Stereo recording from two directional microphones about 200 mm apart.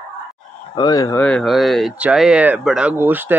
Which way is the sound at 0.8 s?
20° left (ahead or behind).